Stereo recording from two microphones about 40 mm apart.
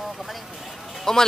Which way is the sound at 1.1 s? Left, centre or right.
Centre.